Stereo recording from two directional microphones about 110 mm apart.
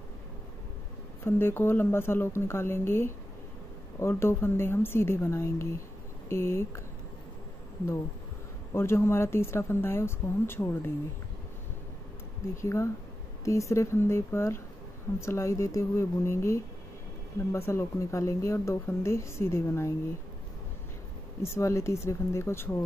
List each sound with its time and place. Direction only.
1.2 s speech: 20° left (ahead or behind)
8.7 s speech: 25° left (ahead or behind)
12.6 s speech: 25° left (ahead or behind)
21.4 s speech: 25° left (ahead or behind)